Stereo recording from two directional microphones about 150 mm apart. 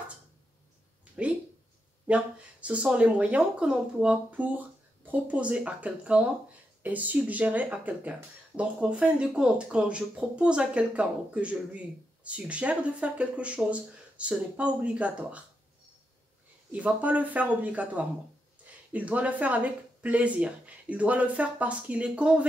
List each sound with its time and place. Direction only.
1.2 s a sound: 10° right (ahead or behind)
2.0 s speech: 10° right (ahead or behind)
16.7 s speech: 10° right (ahead or behind)